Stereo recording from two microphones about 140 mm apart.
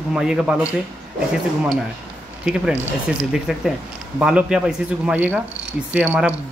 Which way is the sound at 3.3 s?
Centre (ahead or behind).